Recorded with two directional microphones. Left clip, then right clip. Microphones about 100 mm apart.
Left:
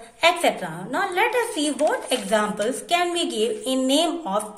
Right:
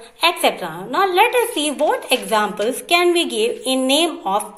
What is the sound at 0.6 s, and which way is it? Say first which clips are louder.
A woman's voice: right 7 dB; 25° right (ahead or behind).